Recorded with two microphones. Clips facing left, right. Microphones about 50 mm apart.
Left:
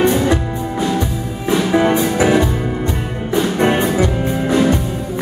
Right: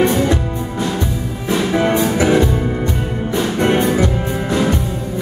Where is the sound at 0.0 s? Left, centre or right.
Centre.